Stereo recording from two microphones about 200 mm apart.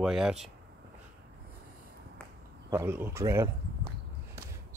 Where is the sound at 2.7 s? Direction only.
10° right (ahead or behind).